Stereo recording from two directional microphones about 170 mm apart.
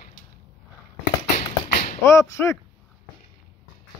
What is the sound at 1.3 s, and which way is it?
Tap, 50° left (ahead or behind).